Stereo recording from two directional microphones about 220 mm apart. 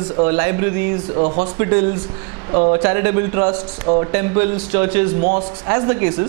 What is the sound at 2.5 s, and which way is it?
Speech, 25° right (ahead or behind).